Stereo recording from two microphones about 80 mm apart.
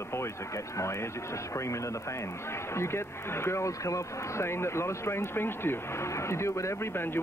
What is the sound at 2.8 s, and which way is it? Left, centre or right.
Speech, left.